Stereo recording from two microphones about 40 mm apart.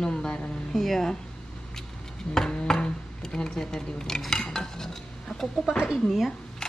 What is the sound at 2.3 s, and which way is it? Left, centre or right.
Speech, centre.